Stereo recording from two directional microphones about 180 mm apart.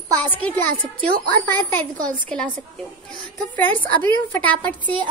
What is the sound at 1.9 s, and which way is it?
Speech, 25° right (ahead or behind).